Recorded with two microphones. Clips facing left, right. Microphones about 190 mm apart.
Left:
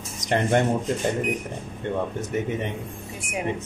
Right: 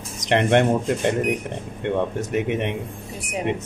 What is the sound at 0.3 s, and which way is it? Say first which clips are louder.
Speech: right 4 dB; 80° right.